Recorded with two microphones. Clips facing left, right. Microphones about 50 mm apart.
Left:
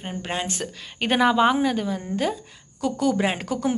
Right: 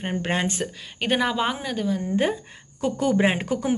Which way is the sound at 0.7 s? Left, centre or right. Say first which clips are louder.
Even; centre.